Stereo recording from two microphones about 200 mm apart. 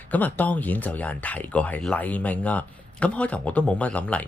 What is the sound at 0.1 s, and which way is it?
Speech, 10° left (ahead or behind).